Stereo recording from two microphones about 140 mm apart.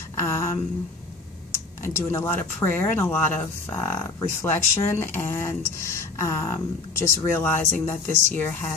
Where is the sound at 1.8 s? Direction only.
20° left (ahead or behind).